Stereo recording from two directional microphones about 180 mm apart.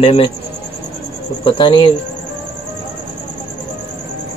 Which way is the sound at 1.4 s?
25° left (ahead or behind).